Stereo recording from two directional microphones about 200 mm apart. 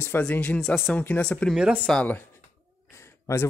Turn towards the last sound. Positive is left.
turn(degrees=15)  # may be behind; listen again after turning